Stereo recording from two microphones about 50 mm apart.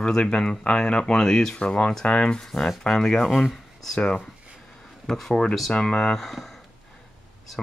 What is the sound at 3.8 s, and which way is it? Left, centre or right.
Speech, centre.